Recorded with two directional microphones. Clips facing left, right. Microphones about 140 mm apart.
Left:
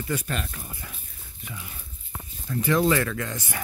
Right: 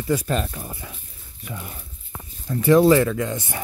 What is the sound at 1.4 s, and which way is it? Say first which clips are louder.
Speech: right 6 dB; 50° right (ahead or behind).